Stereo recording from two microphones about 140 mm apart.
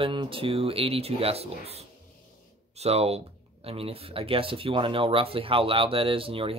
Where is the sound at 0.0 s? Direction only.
35° right (ahead or behind).